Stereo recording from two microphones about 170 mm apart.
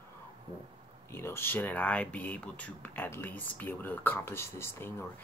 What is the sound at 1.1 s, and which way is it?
Speech, 15° left (ahead or behind).